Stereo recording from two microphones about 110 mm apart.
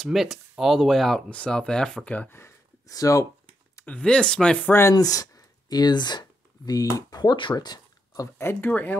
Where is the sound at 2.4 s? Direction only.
30° left (ahead or behind).